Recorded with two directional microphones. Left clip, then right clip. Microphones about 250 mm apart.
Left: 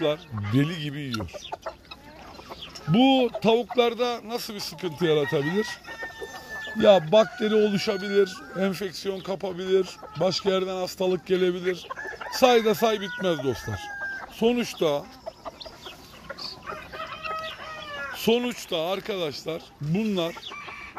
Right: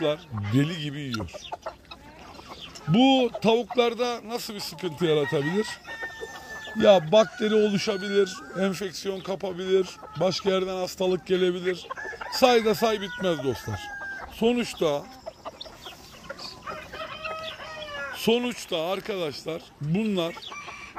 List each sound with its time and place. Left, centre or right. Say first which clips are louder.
0.5 s a man's voice: even; centre
1.2 s speech: left 1 dB; right
2.9 s a man's voice: even; centre
6.8 s a man's voice: even; centre
16.4 s a sound: left 1 dB; left
18.1 s a man's voice: left 1 dB; centre